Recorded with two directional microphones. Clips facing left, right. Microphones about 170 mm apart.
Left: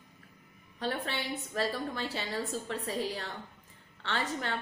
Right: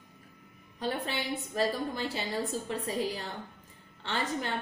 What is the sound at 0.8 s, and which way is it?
A woman's voice, 15° right (ahead or behind).